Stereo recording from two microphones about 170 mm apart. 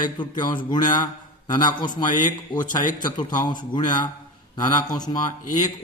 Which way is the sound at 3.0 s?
25° left (ahead or behind).